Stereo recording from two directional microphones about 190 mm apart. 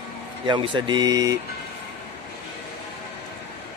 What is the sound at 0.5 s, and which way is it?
Speech, 25° right (ahead or behind).